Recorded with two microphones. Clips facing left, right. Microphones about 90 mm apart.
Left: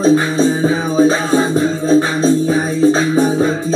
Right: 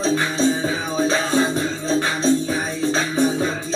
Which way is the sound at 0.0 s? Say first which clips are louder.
Left 7 dB; 35° left (ahead or behind).